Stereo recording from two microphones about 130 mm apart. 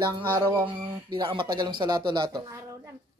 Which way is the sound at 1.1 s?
35° right (ahead or behind).